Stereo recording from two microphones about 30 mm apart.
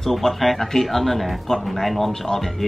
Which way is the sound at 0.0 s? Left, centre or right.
Centre.